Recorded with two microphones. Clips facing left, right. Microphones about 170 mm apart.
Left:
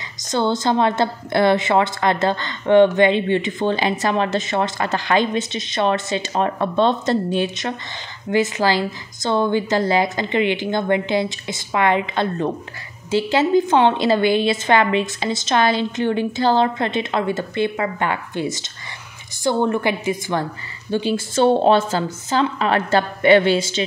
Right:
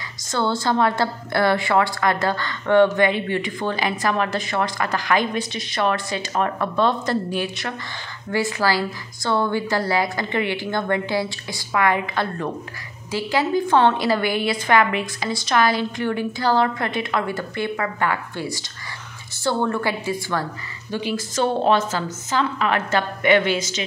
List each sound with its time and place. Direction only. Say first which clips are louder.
0.2 s a woman's voice: left 3 dB; 20° left (ahead or behind)